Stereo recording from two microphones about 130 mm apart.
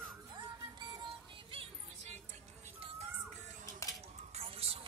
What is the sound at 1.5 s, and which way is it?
Music, 45° right (ahead or behind).